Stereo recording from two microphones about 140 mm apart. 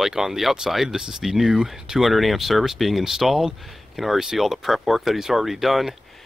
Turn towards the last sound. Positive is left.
turn(degrees=0)  # may be behind; listen again after turning